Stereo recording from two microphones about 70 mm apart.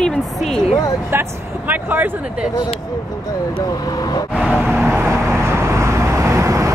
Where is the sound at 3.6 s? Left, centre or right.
Left.